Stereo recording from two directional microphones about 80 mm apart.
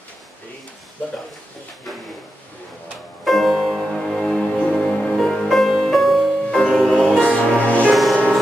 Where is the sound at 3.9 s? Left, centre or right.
Centre.